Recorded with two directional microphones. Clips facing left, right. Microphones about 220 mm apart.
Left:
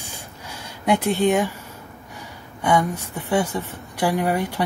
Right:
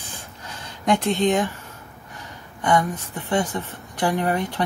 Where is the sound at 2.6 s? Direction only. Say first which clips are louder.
Left 1 dB; 10° left (ahead or behind).